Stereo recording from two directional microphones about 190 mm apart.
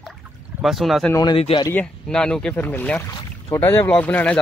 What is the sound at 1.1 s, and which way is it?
Speech, 25° left (ahead or behind).